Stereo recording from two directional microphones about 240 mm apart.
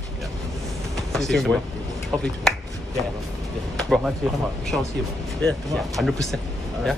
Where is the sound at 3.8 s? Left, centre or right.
Centre.